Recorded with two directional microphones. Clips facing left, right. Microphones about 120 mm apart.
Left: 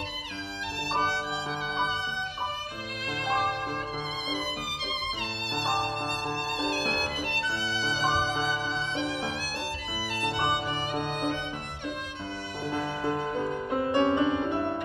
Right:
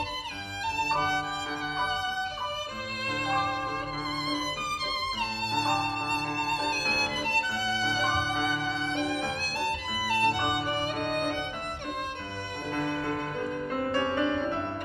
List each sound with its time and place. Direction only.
0.7 s music: 45° right (ahead or behind)
3.1 s music: 40° right (ahead or behind)
6.2 s music: 15° left (ahead or behind)
7.2 s violin: 45° right (ahead or behind)
9.7 s music: 50° right (ahead or behind)
12.6 s violin: 10° left (ahead or behind)
13.1 s music: 20° left (ahead or behind)